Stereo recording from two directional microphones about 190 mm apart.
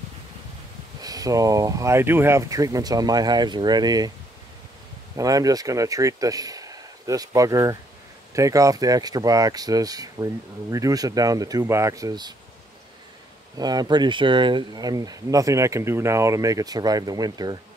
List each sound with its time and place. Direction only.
1.0 s speech: 20° right (ahead or behind)
5.1 s speech: 20° right (ahead or behind)
13.6 s speech: 20° right (ahead or behind)